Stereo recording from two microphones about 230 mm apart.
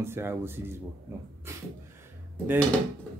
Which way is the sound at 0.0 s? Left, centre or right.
Centre.